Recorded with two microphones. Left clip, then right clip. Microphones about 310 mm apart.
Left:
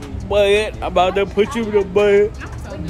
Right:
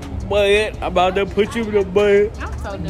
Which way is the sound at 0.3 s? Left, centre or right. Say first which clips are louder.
Left 1 dB; centre.